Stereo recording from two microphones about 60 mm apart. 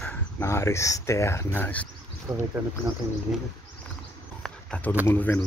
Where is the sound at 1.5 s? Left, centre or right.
Left.